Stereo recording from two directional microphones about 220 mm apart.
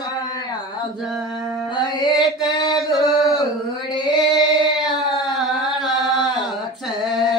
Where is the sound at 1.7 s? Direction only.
20° left (ahead or behind).